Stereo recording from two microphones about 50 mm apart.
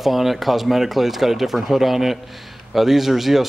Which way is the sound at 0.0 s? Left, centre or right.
Centre.